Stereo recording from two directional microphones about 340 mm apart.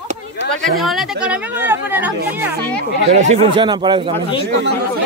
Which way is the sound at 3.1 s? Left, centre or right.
Centre.